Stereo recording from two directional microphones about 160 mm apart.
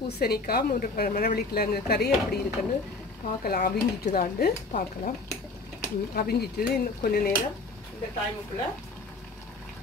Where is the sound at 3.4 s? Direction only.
65° left (ahead or behind).